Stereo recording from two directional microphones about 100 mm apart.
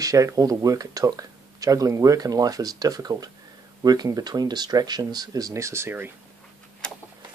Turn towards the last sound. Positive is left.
turn(degrees=-25)  # may be behind; listen again after turning